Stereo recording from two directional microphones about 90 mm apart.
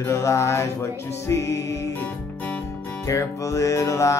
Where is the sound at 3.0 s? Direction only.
35° left (ahead or behind).